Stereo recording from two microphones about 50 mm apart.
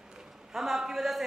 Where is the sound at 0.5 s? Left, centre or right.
Centre.